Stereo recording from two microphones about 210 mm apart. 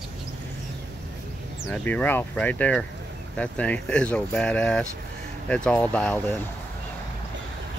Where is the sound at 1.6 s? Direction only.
5° left (ahead or behind).